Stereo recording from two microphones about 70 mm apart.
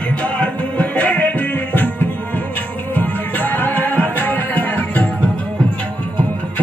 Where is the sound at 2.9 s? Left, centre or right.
Left.